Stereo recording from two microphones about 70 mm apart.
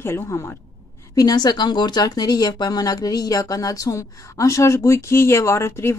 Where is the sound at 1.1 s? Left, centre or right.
Left.